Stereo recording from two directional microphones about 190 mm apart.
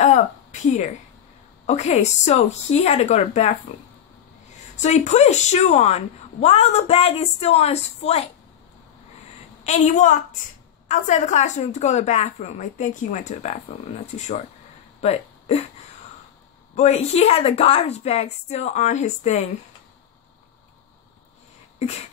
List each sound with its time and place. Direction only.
0.0 s a sound: 40° left (ahead or behind)
1.7 s a woman's voice: 35° left (ahead or behind)
4.7 s a woman's voice: 40° left (ahead or behind)
9.7 s a woman's voice: 40° left (ahead or behind)
15.0 s a sound: 35° left (ahead or behind)
16.7 s a woman's voice: 35° left (ahead or behind)